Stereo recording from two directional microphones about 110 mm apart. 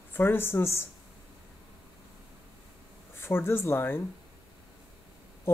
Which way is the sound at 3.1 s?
20° left (ahead or behind).